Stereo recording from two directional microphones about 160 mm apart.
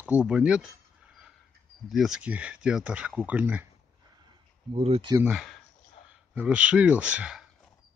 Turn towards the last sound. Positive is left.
turn(degrees=-5)  # may be behind; listen again after turning